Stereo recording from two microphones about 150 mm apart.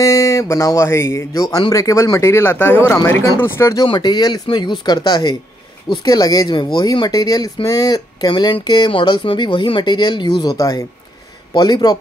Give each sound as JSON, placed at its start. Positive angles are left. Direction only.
{"t": 0.0, "sound": "speech", "side_deg": 20}
{"t": 3.8, "sound": "speech", "side_deg": 30}